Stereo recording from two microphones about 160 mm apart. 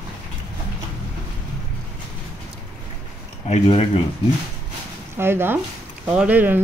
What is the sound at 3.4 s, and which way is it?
Speech, 40° left (ahead or behind).